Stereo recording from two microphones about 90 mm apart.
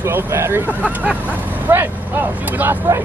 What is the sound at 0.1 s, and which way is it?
Speech, 30° right (ahead or behind).